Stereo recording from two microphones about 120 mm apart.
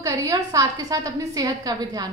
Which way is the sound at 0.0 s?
30° right (ahead or behind).